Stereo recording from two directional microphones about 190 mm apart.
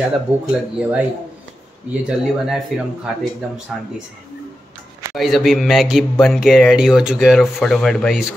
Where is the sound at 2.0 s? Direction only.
5° right (ahead or behind).